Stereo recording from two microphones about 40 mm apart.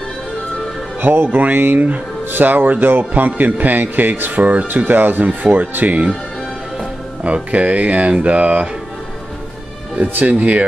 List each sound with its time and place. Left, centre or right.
1.0 s speech: right
4.4 s speech: right
7.2 s speech: right
10.2 s speech: right